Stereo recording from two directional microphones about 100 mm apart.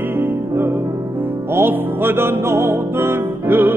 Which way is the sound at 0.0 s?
20° right (ahead or behind).